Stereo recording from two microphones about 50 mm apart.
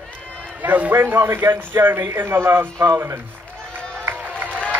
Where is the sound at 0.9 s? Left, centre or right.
Right.